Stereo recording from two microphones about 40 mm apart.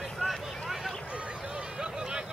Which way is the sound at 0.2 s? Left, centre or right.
Centre.